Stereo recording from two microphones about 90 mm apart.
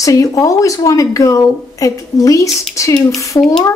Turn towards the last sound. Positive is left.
turn(degrees=50)  # may be behind; listen again after turning